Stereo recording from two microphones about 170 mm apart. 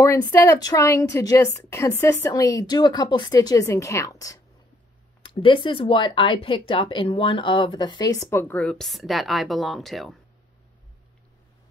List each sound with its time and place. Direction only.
0.0 s speech: 20° left (ahead or behind)
5.2 s speech: 30° left (ahead or behind); by 10.1 s centre (ahead or behind)